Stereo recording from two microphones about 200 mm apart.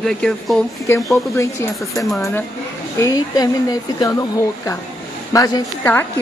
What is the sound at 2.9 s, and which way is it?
Speech, 15° left (ahead or behind).